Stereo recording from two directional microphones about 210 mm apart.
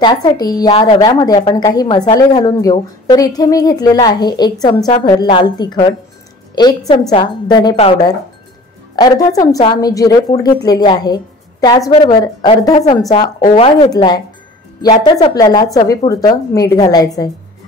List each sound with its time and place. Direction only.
0.0 s a woman's voice: 20° left (ahead or behind)
13.6 s a woman's voice: 25° left (ahead or behind)